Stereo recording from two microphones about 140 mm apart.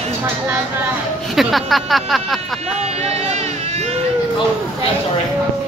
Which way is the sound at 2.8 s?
50° right (ahead or behind).